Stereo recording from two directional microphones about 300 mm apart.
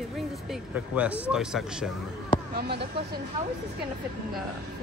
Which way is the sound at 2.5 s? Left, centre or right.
Right.